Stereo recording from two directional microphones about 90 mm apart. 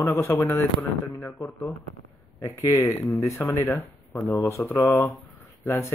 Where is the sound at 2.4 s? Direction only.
35° left (ahead or behind).